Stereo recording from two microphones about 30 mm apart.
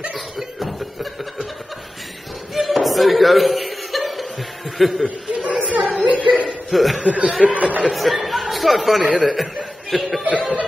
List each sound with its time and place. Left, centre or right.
0.1 s a sound: centre
2.5 s chuckle: centre
4.7 s speech: centre
5.0 s a sound: right
6.0 s chuckle: right
6.7 s speech: centre
7.0 s speech: right
7.9 s speech: centre
9.1 s a man's voice: centre
9.9 s speech: centre